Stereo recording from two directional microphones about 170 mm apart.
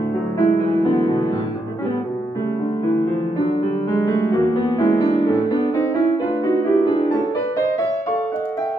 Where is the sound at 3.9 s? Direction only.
20° left (ahead or behind).